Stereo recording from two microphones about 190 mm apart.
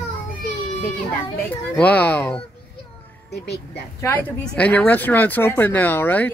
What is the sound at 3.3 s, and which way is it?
Speech, 60° left (ahead or behind).